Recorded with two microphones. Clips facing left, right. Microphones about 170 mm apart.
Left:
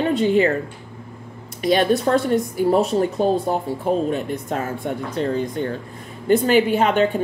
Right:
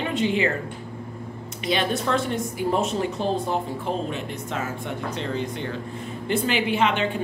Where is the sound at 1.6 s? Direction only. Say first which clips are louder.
Left 7 dB; 45° left (ahead or behind).